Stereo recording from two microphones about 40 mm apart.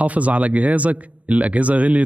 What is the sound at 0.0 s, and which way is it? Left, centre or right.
Speech, right.